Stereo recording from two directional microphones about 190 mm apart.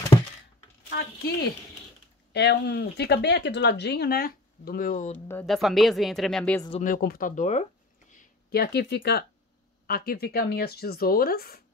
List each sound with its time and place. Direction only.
0.8 s speech: 55° left (ahead or behind)
2.3 s speech: 60° left (ahead or behind); by 5.2 s 40° left (ahead or behind)
5.3 s speech: 5° left (ahead or behind)
6.8 s speech: 50° left (ahead or behind)
8.1 s a sound: 45° left (ahead or behind)
8.5 s speech: 60° left (ahead or behind)